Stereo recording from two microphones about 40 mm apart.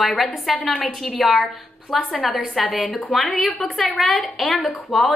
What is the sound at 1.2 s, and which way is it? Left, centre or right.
A woman's voice, centre.